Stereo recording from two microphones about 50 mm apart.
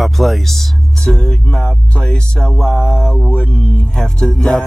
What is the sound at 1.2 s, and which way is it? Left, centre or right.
Music, centre.